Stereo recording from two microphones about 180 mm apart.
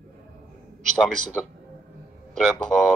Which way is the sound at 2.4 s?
Centre (ahead or behind).